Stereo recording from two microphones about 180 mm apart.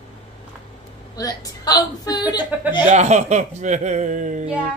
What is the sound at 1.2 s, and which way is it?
A woman's voice, 20° left (ahead or behind).